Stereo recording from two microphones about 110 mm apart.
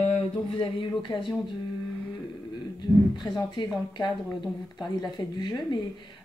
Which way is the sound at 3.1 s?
40° left (ahead or behind).